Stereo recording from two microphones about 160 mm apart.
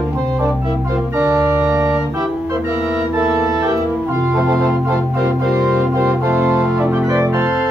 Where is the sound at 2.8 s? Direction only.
5° right (ahead or behind).